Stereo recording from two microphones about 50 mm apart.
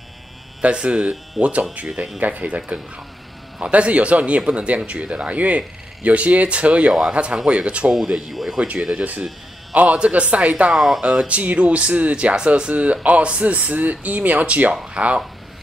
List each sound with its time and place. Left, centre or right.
0.6 s speech: right
8.3 s speech: centre
9.9 s speech: right
10.7 s speech: centre
11.2 s speech: right